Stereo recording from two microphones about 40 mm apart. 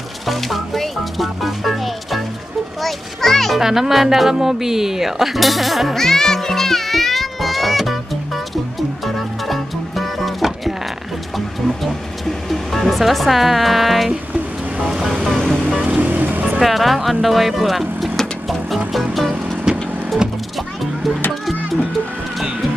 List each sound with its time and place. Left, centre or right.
0.3 s music: centre
2.8 s a child's voice: centre
3.6 s speech: centre
5.9 s music: centre
14.8 s ocean: centre
15.3 s music: centre
15.8 s music: right
16.4 s speech: centre
18.9 s music: centre